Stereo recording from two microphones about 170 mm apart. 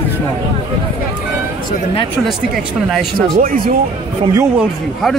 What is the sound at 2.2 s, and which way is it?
Speech, centre (ahead or behind).